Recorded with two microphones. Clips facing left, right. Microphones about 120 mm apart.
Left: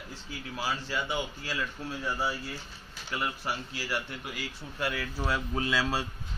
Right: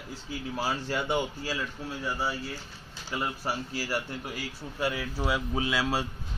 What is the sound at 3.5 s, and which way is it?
Speech, 30° right (ahead or behind).